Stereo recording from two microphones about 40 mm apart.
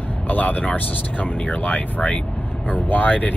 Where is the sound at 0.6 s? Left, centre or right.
Left.